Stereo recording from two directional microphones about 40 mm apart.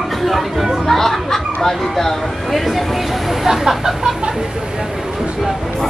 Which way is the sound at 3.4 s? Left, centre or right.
Centre.